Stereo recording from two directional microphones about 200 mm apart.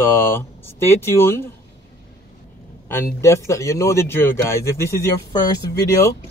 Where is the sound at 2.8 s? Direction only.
10° left (ahead or behind).